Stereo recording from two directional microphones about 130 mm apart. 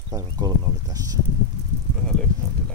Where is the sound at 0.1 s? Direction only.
25° right (ahead or behind).